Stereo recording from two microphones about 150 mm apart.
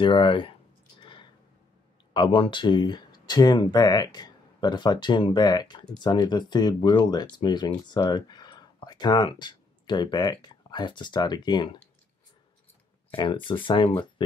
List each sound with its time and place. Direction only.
0.0 s speech: 35° left (ahead or behind)
1.0 s a sound: 35° left (ahead or behind)
2.1 s speech: 35° left (ahead or behind)
13.1 s speech: 35° left (ahead or behind)